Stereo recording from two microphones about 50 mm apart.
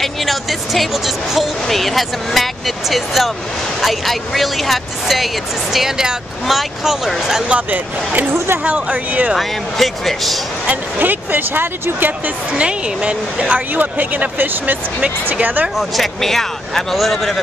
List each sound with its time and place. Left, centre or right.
0.0 s speech: centre
7.4 s speech: right
9.3 s speech: centre
10.7 s speech: right
12.5 s speech: right
15.8 s speech: centre